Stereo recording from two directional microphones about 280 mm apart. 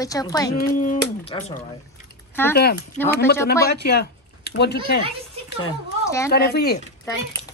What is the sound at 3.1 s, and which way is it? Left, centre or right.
Speech, left.